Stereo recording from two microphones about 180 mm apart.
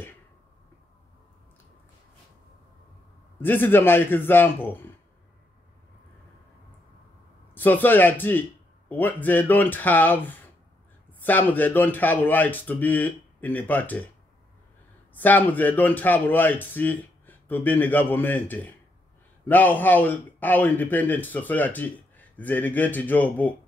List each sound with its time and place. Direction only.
3.3 s a man's voice: 10° left (ahead or behind)
7.5 s a man's voice: 10° left (ahead or behind)
15.1 s a man's voice: 10° left (ahead or behind)